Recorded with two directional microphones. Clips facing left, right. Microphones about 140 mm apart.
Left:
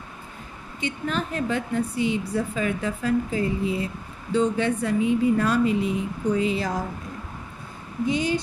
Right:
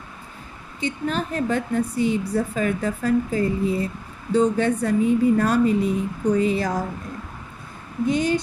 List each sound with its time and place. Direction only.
0.7 s a woman's voice: 40° right (ahead or behind)
8.1 s a woman's voice: 50° right (ahead or behind)